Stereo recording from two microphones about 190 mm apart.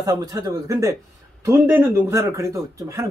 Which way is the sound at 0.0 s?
15° right (ahead or behind).